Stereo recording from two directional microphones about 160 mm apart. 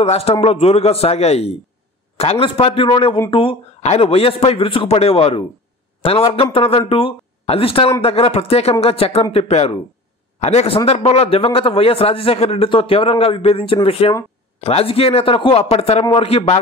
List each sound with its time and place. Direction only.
0.0 s a man's voice: 40° left (ahead or behind)